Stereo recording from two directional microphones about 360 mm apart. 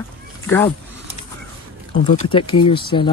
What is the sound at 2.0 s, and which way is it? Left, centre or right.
Speech, centre.